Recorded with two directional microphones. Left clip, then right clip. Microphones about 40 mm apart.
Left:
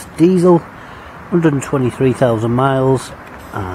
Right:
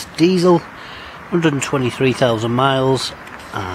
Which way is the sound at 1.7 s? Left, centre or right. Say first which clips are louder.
Left 2 dB; right.